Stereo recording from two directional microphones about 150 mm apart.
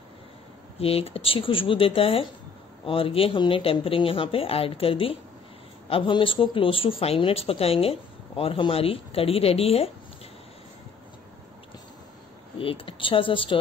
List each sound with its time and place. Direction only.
0.7 s speech: 40° left (ahead or behind)
12.5 s speech: 35° left (ahead or behind)